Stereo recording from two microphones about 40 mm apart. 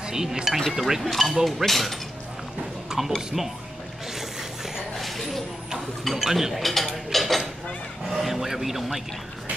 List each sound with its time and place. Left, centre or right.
0.0 s speech: centre
2.9 s music: centre
3.3 s speech: centre
4.1 s a sound: centre
4.9 s a sound: centre
6.0 s speech: centre